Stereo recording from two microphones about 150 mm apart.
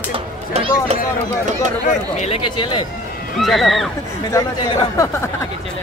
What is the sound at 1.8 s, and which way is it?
Speech, 50° left (ahead or behind).